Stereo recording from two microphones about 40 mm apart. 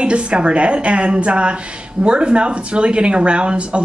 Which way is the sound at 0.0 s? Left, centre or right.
Right.